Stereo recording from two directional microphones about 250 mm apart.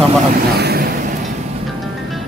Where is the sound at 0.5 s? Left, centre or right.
Right.